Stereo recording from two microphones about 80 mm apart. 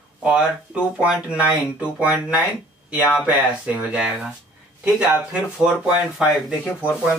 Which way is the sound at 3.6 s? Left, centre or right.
Centre.